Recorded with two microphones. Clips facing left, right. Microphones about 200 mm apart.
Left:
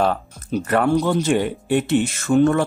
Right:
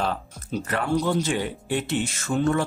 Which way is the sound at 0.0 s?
55° left (ahead or behind).